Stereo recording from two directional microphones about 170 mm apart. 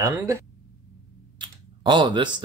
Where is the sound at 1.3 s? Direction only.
25° right (ahead or behind).